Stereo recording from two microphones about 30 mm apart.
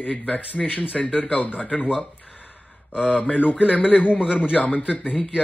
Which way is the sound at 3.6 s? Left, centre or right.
Left.